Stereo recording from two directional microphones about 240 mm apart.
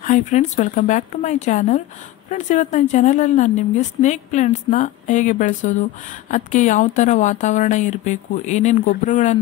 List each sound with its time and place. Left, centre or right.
0.0 s a woman's voice: left